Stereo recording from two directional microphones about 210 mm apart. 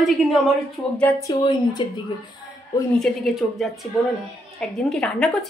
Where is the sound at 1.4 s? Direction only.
20° left (ahead or behind).